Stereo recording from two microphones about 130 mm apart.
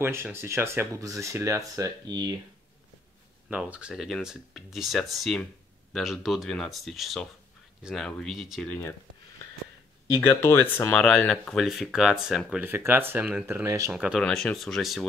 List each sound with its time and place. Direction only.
0.0 s speech: 20° right (ahead or behind)
3.4 s speech: 10° right (ahead or behind)
10.2 s speech: 15° left (ahead or behind)
11.6 s speech: 5° right (ahead or behind)
12.6 s speech: 15° right (ahead or behind)
13.7 s speech: 25° right (ahead or behind)
13.9 s speech: 5° right (ahead or behind)